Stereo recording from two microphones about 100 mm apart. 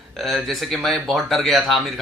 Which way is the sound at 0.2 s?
Centre (ahead or behind).